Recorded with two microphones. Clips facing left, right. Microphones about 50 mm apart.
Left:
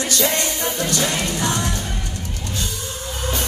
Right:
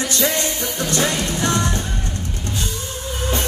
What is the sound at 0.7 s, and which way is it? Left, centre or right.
Music, right.